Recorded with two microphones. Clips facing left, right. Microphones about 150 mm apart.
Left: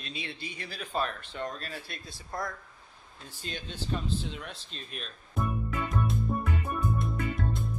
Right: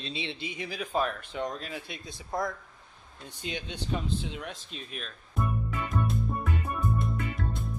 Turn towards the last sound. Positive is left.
turn(degrees=0)  # may be behind; listen again after turning